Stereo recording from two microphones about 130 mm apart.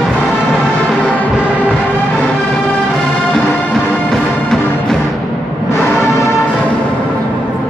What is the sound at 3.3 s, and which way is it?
Music, 5° left (ahead or behind).